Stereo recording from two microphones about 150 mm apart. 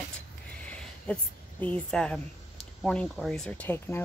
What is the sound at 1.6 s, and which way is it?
A woman's voice, 10° left (ahead or behind).